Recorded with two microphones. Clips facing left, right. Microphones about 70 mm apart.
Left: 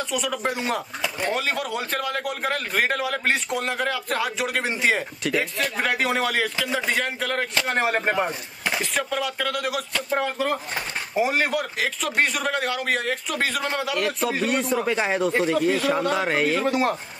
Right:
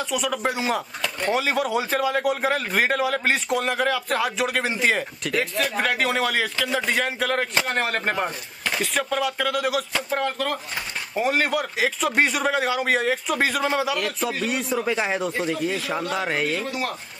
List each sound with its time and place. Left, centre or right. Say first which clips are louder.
0.1 s speech: right 2 dB; centre